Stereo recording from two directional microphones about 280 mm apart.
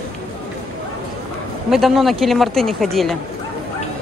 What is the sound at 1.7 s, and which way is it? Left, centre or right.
Speech, centre.